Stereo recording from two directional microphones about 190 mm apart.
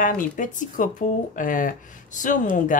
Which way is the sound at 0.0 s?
45° left (ahead or behind).